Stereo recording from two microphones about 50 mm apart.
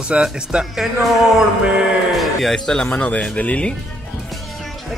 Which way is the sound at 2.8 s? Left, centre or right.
Left.